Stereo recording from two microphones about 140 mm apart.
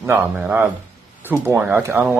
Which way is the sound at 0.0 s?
15° right (ahead or behind).